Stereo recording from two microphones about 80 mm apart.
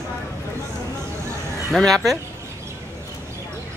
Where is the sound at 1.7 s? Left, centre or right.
Centre.